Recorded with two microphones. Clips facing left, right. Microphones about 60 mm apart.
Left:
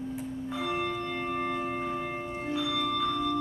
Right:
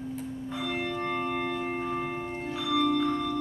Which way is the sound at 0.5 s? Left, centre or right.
Centre.